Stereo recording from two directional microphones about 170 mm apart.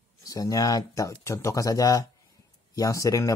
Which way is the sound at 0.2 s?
20° left (ahead or behind).